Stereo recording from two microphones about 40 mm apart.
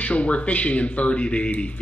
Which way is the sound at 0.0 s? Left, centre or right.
Left.